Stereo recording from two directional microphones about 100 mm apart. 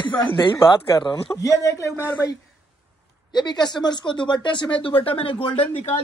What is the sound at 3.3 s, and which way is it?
Speech, 45° left (ahead or behind).